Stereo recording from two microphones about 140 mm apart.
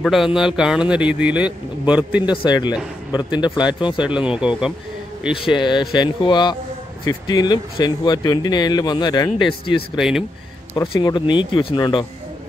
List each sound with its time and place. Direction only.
0.0 s a man's voice: centre (ahead or behind)
2.2 s speech: 30° left (ahead or behind)
4.0 s speech: 10° right (ahead or behind)
5.6 s speech: 35° left (ahead or behind)
9.9 s a man's voice: 5° right (ahead or behind)
10.8 s speech: 40° left (ahead or behind)